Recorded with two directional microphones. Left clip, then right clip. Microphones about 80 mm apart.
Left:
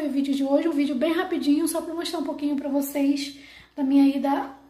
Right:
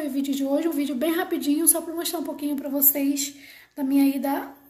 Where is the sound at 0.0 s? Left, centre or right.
Right.